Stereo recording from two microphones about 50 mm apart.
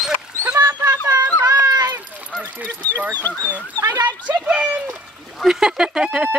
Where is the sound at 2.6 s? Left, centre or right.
Left.